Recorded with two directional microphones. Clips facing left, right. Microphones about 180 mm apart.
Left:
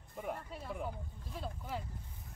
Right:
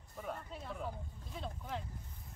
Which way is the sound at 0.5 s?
5° left (ahead or behind).